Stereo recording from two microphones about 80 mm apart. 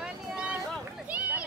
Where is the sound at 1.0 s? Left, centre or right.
Centre.